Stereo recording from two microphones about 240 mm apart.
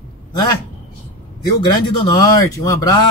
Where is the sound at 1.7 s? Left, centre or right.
Centre.